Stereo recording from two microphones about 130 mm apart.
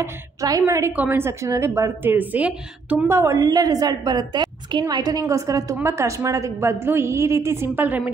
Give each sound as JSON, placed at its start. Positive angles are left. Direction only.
{"t": 0.0, "sound": "a woman's voice", "side_deg": -25}
{"t": 3.1, "sound": "a woman's voice", "side_deg": -20}